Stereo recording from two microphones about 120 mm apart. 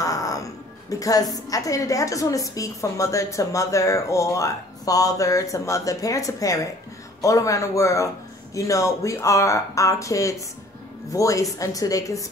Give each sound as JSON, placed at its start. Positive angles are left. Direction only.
{"t": 0.0, "sound": "a woman's voice", "side_deg": 30}